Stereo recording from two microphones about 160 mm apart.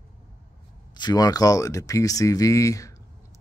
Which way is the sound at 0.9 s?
25° left (ahead or behind).